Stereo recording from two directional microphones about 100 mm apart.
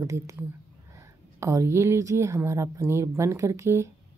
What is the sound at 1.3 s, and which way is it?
Speech, 30° right (ahead or behind).